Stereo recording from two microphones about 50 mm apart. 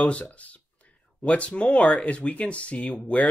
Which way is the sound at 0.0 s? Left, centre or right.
Left.